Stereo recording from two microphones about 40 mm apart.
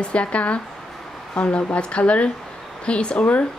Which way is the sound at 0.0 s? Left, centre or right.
Left.